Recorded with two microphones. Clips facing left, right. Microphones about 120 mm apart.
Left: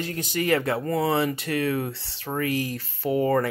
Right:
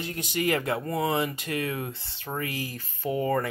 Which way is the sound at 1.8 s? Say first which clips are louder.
Left 4 dB; 90° left.